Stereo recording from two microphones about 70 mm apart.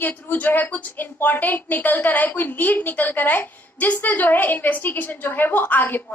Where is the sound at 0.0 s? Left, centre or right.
Left.